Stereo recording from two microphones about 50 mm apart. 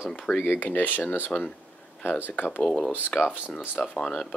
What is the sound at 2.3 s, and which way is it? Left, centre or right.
Speech, left.